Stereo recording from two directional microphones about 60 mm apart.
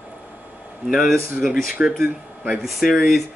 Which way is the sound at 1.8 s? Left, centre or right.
Right.